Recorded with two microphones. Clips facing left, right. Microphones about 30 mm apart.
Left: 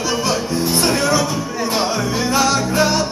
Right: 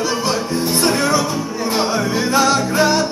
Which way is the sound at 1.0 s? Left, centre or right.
Centre.